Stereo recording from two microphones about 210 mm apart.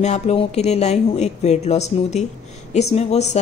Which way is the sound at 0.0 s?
30° left (ahead or behind).